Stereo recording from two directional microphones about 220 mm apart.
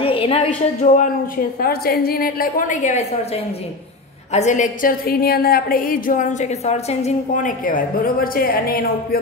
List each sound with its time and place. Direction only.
0.0 s a sound: 25° left (ahead or behind)
0.7 s a woman's voice: 35° left (ahead or behind)
4.3 s a woman's voice: 30° left (ahead or behind)